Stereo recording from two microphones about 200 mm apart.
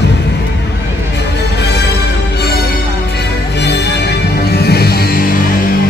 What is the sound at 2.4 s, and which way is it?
Music, 50° left (ahead or behind).